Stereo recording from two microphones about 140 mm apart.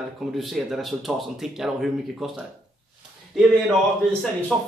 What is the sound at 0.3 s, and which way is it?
Speech, centre (ahead or behind).